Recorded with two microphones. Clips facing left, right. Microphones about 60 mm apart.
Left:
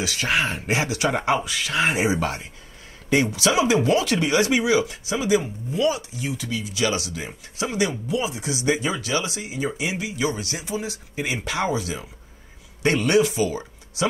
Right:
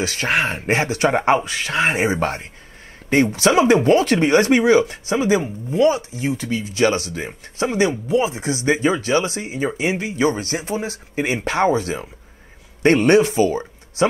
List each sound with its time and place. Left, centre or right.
0.0 s speech: right